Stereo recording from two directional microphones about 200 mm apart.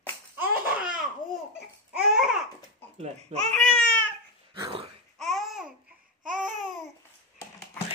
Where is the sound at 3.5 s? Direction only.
5° left (ahead or behind).